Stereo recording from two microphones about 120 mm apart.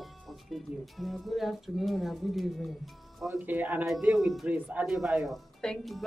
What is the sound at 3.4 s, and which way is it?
Speech, 15° right (ahead or behind).